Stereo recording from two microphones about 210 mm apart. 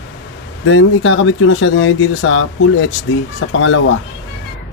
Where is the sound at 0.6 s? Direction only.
65° left (ahead or behind).